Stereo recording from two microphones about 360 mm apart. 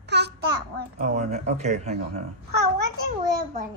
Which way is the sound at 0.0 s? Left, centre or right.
Right.